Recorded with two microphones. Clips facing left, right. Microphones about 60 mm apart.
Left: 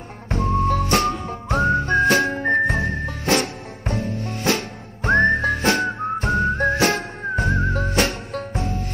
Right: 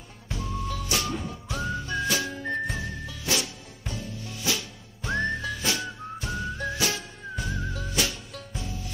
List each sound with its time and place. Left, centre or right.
0.3 s music: left
1.2 s whistling: left